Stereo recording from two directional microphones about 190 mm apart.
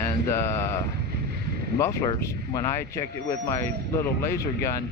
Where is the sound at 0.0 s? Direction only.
15° left (ahead or behind).